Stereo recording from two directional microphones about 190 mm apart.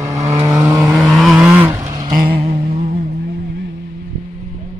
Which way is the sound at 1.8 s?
20° right (ahead or behind).